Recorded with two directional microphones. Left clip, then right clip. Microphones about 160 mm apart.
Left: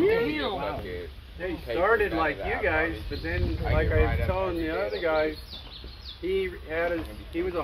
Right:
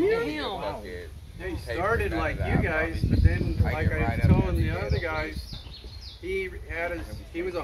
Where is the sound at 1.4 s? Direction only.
40° left (ahead or behind).